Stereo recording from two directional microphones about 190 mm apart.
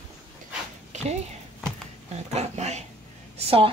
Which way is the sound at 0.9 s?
35° right (ahead or behind).